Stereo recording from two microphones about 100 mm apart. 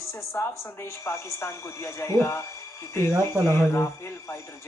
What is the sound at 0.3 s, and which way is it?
Speech, 25° left (ahead or behind).